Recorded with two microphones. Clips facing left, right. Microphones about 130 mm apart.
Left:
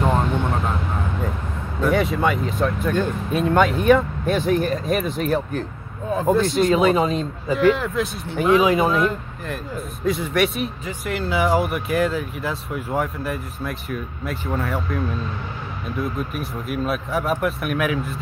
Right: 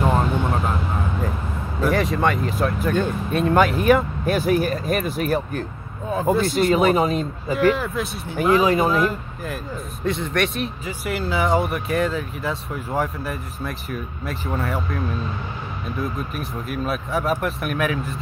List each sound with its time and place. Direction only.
0.0 s vehicle: 5° right (ahead or behind)
1.8 s speech: centre (ahead or behind)
16.0 s speech: centre (ahead or behind)